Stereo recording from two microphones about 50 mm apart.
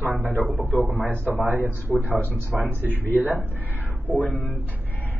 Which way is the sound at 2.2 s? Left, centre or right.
Left.